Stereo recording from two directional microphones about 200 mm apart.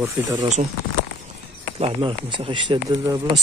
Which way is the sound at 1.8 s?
25° right (ahead or behind).